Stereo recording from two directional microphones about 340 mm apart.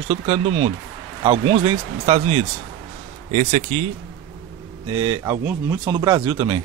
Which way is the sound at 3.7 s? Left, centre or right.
Right.